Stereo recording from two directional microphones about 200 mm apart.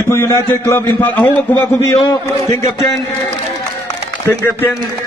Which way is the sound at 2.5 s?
15° left (ahead or behind).